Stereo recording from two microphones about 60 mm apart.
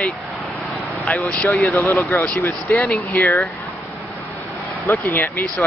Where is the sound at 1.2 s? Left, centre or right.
Centre.